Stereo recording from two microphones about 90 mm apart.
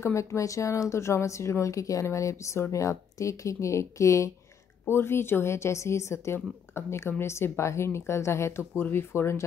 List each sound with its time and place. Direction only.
0.0 s a woman's voice: 30° left (ahead or behind)